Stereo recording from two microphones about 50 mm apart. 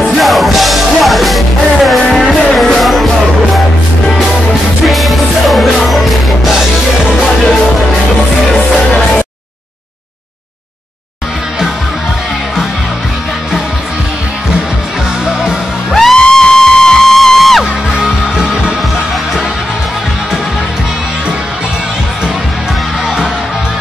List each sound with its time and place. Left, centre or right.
0.0 s music: centre
4.8 s music: centre
15.9 s music: centre
17.9 s music: centre